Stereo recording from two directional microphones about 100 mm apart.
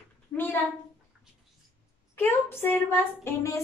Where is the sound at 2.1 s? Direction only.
25° left (ahead or behind).